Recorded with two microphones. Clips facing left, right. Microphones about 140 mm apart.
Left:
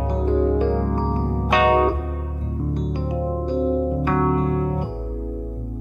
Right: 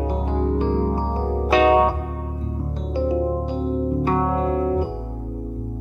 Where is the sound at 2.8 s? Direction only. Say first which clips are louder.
Right 7 dB; 30° right (ahead or behind).